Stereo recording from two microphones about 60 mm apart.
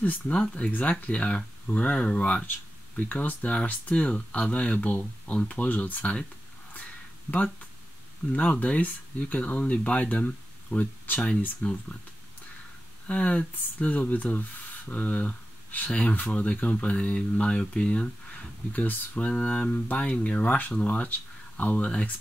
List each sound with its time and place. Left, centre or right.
0.3 s speech: centre
6.7 s a sound: left
8.3 s speech: left
13.0 s speech: left